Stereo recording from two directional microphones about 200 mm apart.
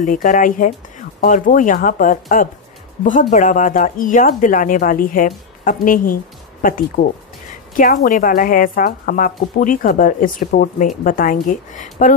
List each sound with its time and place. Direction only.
0.0 s a woman's voice: 40° left (ahead or behind)
7.0 s speech: 60° left (ahead or behind)
7.7 s a woman's voice: 40° left (ahead or behind)